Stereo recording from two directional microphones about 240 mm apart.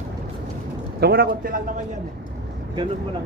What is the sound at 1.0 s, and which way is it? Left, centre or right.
Speech, right.